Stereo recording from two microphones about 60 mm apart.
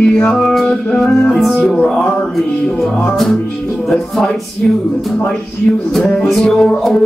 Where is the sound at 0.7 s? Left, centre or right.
Centre.